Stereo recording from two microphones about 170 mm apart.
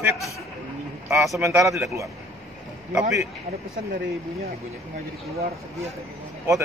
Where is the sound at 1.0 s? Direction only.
15° right (ahead or behind).